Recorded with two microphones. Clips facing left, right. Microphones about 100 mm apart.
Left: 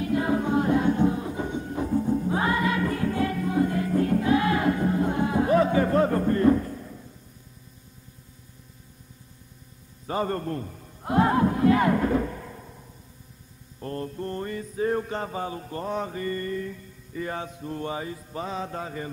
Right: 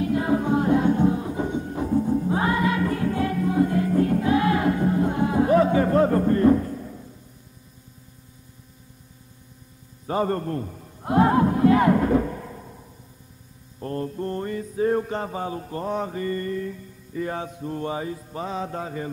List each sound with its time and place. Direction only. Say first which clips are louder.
0.0 s music: right 2 dB; 15° right (ahead or behind)
10.0 s a man's voice: right 3 dB; 25° right (ahead or behind)
13.7 s mantra: right 4 dB; 20° right (ahead or behind)